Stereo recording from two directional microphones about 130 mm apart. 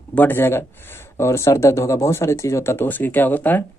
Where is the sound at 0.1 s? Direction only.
15° left (ahead or behind).